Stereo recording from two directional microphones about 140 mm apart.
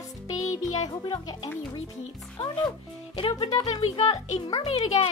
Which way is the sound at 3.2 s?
40° left (ahead or behind).